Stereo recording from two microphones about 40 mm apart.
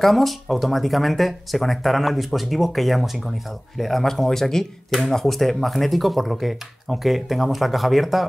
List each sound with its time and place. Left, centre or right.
0.0 s speech: centre